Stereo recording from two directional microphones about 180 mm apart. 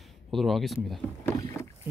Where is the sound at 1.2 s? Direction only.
15° left (ahead or behind).